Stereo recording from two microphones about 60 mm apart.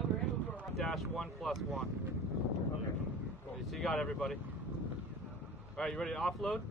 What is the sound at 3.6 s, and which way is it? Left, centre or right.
Speech, centre.